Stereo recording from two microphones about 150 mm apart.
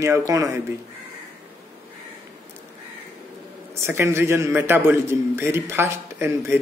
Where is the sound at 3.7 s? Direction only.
15° right (ahead or behind).